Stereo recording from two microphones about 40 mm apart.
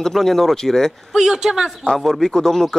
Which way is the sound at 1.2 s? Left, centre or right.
Centre.